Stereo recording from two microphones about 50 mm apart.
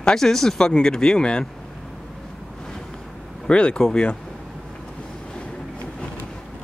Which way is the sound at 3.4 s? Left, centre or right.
Centre.